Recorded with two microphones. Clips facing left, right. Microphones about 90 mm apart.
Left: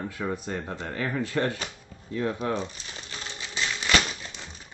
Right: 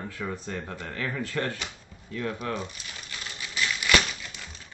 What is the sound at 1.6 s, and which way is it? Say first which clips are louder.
Crumpling: left 2 dB; 30° left (ahead or behind).